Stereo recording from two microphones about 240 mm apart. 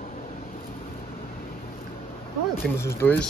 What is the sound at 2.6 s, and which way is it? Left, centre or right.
Speech, centre.